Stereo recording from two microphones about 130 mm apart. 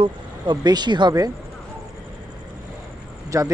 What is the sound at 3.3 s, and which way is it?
Speech, 25° right (ahead or behind).